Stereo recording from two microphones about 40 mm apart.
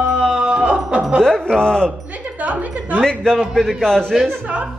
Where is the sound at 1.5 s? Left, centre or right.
Centre.